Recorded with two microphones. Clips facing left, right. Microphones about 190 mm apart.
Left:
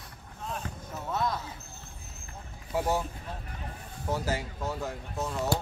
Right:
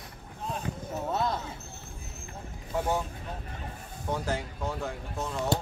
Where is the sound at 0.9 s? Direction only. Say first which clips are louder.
Right 1 dB; 30° right (ahead or behind).